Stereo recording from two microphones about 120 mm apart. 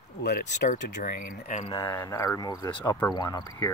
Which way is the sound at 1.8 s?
25° left (ahead or behind).